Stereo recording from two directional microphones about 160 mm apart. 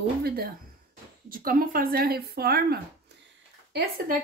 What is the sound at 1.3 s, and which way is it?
Speech, 65° right (ahead or behind).